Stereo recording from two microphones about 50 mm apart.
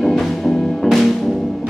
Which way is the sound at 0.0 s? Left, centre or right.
Centre.